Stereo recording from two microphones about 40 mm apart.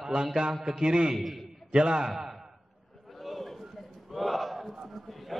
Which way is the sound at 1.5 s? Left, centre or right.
Centre.